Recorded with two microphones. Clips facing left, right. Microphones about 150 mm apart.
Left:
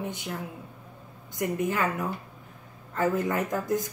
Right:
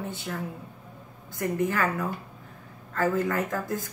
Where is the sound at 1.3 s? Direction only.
20° left (ahead or behind).